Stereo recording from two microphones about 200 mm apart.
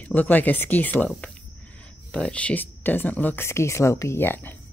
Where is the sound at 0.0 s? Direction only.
10° left (ahead or behind).